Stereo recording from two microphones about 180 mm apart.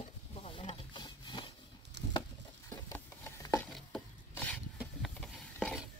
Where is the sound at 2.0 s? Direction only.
70° right (ahead or behind).